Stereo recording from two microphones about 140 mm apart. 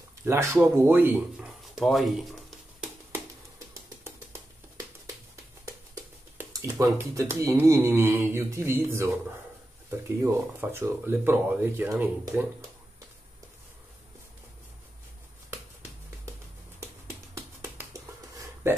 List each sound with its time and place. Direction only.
0.2 s speech: 20° right (ahead or behind); by 2.9 s centre (ahead or behind)
3.1 s music: 15° right (ahead or behind)
6.5 s speech: 25° right (ahead or behind)
17.3 s a sound: 20° right (ahead or behind)